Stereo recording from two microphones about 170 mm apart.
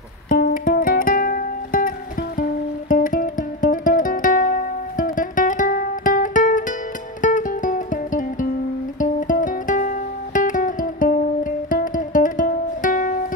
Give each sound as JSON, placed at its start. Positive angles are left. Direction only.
{"t": 0.3, "sound": "music", "side_deg": 55}